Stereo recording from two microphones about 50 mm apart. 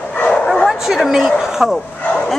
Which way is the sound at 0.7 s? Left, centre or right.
Centre.